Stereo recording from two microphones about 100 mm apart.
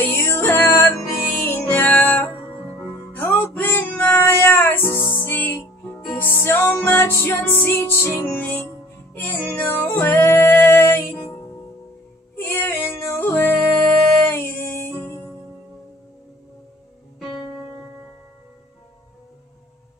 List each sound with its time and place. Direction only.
0.0 s music: 20° left (ahead or behind)
12.4 s music: 25° left (ahead or behind)